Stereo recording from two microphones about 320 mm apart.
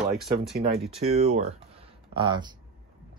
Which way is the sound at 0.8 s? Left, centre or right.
Centre.